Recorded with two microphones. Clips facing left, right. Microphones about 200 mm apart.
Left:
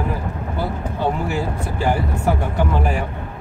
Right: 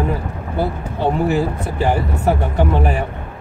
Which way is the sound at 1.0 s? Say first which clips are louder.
Right 5 dB; 20° right (ahead or behind).